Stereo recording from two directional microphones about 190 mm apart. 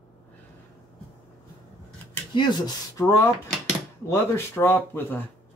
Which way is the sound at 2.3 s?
25° left (ahead or behind).